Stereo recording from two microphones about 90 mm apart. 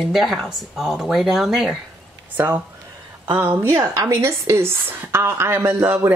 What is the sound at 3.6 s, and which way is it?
A woman's voice, 30° right (ahead or behind).